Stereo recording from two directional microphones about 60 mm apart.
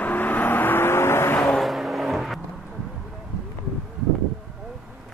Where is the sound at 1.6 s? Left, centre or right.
Centre.